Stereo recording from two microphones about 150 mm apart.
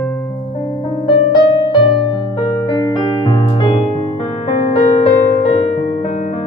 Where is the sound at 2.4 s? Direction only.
30° left (ahead or behind).